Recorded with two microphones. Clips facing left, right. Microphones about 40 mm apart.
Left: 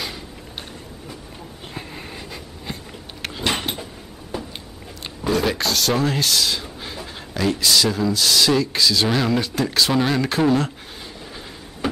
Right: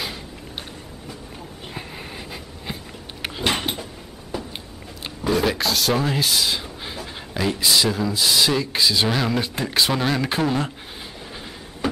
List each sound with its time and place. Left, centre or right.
1.7 s a sound: centre
7.3 s speech: centre
9.1 s speech: centre
9.4 s speech: centre
9.9 s speech: centre